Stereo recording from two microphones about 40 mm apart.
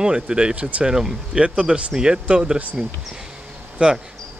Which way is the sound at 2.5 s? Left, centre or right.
Right.